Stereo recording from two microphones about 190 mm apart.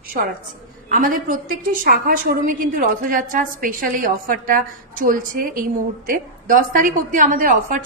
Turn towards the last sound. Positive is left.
turn(degrees=-45)  # may be behind; listen again after turning